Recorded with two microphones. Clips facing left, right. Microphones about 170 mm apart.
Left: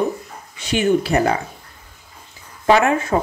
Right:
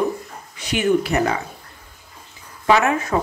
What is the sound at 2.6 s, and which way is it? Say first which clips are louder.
Speech: left 2 dB; 30° left (ahead or behind).